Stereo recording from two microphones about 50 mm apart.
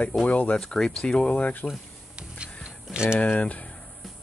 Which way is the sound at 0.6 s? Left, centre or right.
Centre.